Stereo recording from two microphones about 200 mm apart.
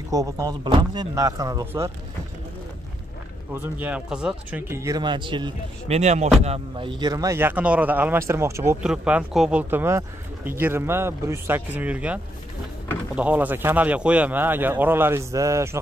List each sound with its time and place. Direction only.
0.1 s speech: 15° right (ahead or behind)
3.5 s speech: 10° right (ahead or behind)